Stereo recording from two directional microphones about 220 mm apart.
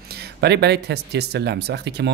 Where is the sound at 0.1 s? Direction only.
50° right (ahead or behind).